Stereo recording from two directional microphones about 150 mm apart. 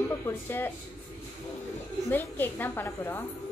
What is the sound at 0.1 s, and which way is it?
Speech, 15° left (ahead or behind).